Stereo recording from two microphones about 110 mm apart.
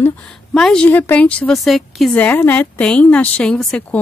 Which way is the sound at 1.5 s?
Centre (ahead or behind).